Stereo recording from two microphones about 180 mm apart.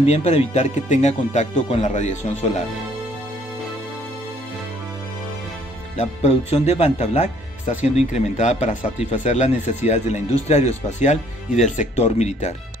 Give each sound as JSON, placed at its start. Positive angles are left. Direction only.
{"t": 0.0, "sound": "speech", "side_deg": 40}
{"t": 5.9, "sound": "speech", "side_deg": 35}